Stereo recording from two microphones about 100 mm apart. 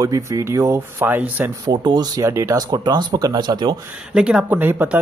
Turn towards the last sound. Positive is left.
turn(degrees=-20)  # may be behind; listen again after turning